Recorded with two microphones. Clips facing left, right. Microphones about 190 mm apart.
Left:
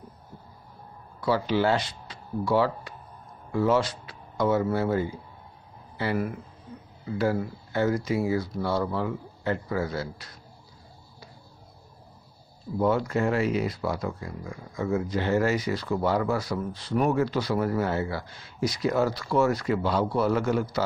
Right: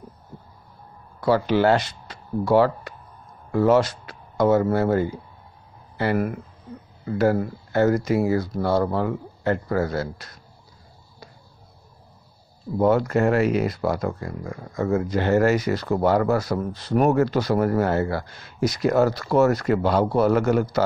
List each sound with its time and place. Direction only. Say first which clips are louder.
1.2 s speech: right 5 dB; 50° right (ahead or behind)
1.8 s speech: right 3 dB; 45° right (ahead or behind)
8.0 s speech: right 5 dB; 60° right (ahead or behind)
12.7 s speech: right 5 dB; 60° right (ahead or behind)
15.5 s speech: right 5 dB; 45° right (ahead or behind)